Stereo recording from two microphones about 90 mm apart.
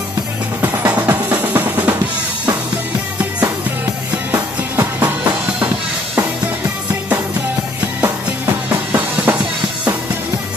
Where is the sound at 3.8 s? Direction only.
25° right (ahead or behind).